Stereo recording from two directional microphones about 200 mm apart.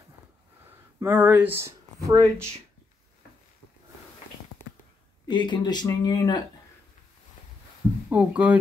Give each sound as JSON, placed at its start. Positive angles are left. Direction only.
{"t": 1.0, "sound": "speech", "side_deg": -10}
{"t": 5.2, "sound": "speech", "side_deg": 20}
{"t": 8.1, "sound": "speech", "side_deg": -5}